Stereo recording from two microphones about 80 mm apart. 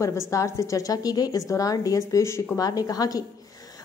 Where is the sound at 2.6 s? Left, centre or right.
Left.